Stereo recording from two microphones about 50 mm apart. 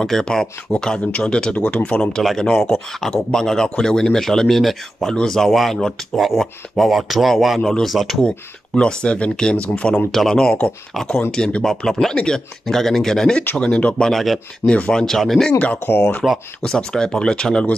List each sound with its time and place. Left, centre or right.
0.0 s a man's voice: centre
1.5 s speech: left
1.8 s a man's voice: centre
8.2 s speech: centre
9.9 s a man's voice: centre
13.6 s speech: left
14.0 s speech: centre
14.7 s speech: left
15.0 s a man's voice: centre
15.6 s speech: left
16.2 s speech: centre
16.6 s a man's voice: centre